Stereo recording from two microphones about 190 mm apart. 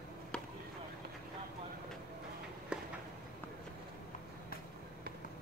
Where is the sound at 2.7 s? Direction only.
5° right (ahead or behind).